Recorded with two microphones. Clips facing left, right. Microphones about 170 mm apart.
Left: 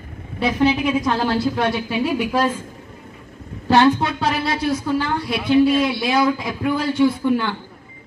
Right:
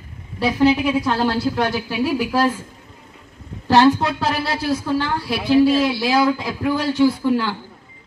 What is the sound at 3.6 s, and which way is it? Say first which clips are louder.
A woman's voice: right 1 dB; centre (ahead or behind).